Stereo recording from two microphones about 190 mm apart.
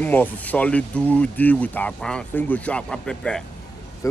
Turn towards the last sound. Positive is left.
turn(degrees=15)  # may be behind; listen again after turning